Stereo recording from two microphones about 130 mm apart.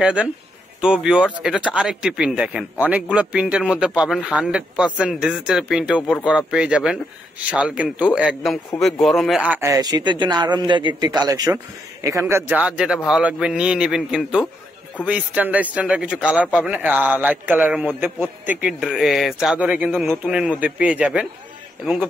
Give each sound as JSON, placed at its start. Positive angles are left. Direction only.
{"t": 0.0, "sound": "a man's voice", "side_deg": -10}
{"t": 8.4, "sound": "speech", "side_deg": 5}
{"t": 9.4, "sound": "a man's voice", "side_deg": -10}
{"t": 9.7, "sound": "a man's voice", "side_deg": -30}
{"t": 12.5, "sound": "a man's voice", "side_deg": -5}